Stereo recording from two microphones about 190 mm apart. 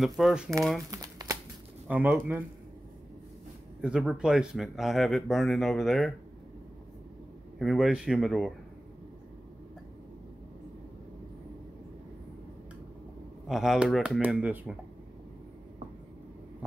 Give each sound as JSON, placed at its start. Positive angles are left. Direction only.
{"t": 0.0, "sound": "speech", "side_deg": 0}
{"t": 0.8, "sound": "crumpling", "side_deg": -20}
{"t": 1.9, "sound": "speech", "side_deg": -10}
{"t": 3.8, "sound": "speech", "side_deg": -5}
{"t": 7.5, "sound": "speech", "side_deg": 0}
{"t": 13.5, "sound": "speech", "side_deg": 0}